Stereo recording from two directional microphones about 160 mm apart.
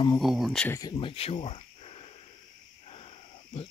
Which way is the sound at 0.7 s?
20° left (ahead or behind).